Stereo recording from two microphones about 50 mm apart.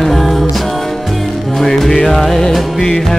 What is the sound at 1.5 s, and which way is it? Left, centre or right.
Music, centre.